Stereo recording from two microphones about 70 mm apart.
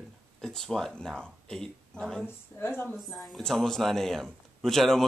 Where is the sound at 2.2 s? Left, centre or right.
Left.